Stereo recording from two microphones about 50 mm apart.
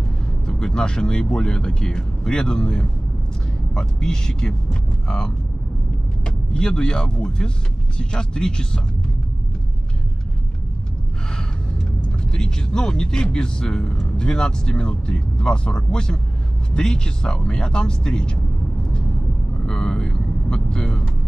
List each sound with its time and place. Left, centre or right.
0.5 s speech: centre
12.3 s speech: centre
19.6 s vehicle: centre